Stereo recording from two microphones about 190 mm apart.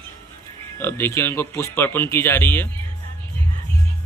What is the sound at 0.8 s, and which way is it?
Speech, 10° left (ahead or behind).